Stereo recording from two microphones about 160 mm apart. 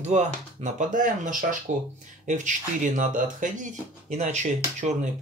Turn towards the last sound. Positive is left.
turn(degrees=-45)  # may be behind; listen again after turning